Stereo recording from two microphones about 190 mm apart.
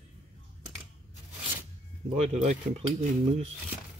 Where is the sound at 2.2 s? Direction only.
30° right (ahead or behind).